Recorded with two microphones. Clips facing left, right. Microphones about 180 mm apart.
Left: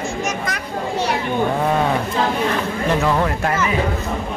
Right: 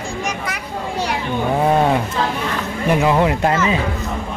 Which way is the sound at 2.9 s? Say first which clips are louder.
Right 4 dB; 15° right (ahead or behind).